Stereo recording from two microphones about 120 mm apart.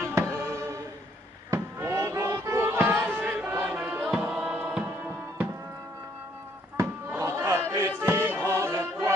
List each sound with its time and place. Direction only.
0.0 s music: 20° right (ahead or behind)
6.8 s a sound: 20° right (ahead or behind)
8.0 s music: 20° right (ahead or behind)